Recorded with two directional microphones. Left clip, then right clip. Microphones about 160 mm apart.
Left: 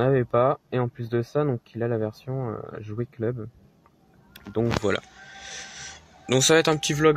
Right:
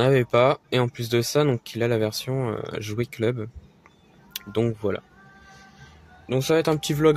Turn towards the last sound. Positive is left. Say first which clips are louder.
# even
turn(degrees=-15)  # may be behind; listen again after turning